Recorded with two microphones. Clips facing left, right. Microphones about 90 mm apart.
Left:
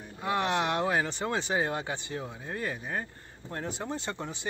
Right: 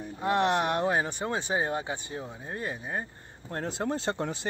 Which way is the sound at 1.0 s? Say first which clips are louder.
Even; 20° right (ahead or behind).